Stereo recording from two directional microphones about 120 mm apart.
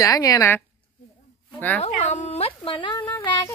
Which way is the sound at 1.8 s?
80° left.